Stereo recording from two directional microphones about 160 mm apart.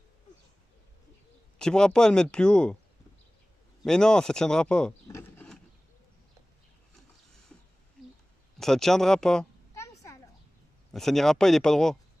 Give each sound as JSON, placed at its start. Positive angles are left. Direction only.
{"t": 1.6, "sound": "speech", "side_deg": 5}
{"t": 3.8, "sound": "speech", "side_deg": 5}
{"t": 5.0, "sound": "a sound", "side_deg": 15}
{"t": 8.5, "sound": "speech", "side_deg": 0}
{"t": 9.8, "sound": "a sound", "side_deg": 20}
{"t": 10.9, "sound": "speech", "side_deg": 0}